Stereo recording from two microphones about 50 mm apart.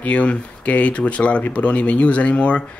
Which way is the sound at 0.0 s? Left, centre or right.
Left.